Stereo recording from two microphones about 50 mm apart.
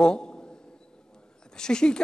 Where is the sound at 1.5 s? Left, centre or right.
Centre.